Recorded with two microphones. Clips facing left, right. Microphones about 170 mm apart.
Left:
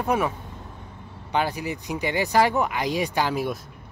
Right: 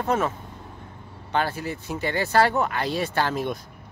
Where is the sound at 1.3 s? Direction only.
15° left (ahead or behind).